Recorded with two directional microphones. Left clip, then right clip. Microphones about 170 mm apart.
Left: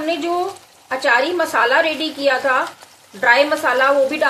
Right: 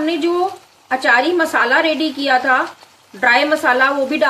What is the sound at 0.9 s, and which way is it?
A woman's voice, 25° right (ahead or behind).